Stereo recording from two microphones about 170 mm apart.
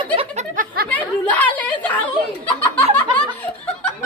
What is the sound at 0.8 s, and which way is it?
Chatter, 10° left (ahead or behind).